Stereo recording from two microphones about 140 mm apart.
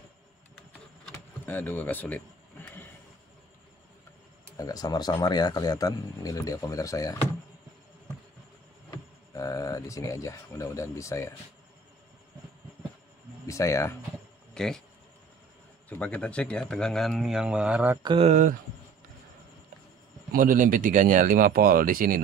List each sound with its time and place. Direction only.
1.1 s speech: 15° left (ahead or behind)
4.6 s speech: 25° left (ahead or behind)
8.9 s speech: 25° left (ahead or behind)
13.5 s speech: 20° left (ahead or behind)
14.5 s a sound: 5° left (ahead or behind)
15.9 s speech: 10° left (ahead or behind); by 17.9 s 10° right (ahead or behind)
18.0 s speech: 40° right (ahead or behind)
18.3 s speech: 65° right (ahead or behind)
20.3 s speech: 75° right (ahead or behind)